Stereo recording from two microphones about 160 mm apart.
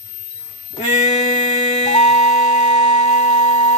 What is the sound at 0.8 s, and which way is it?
Music, 45° left (ahead or behind).